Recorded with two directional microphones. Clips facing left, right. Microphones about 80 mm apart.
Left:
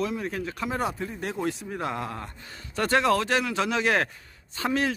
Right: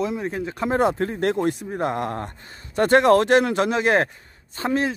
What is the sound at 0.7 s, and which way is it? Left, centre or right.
Speech, right.